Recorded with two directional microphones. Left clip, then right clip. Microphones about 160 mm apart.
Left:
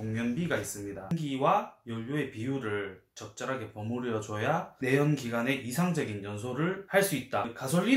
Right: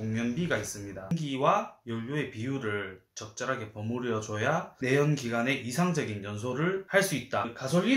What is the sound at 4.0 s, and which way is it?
Speech, 20° right (ahead or behind).